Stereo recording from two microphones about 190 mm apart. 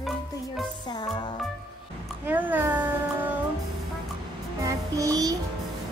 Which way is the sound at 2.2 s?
10° right (ahead or behind).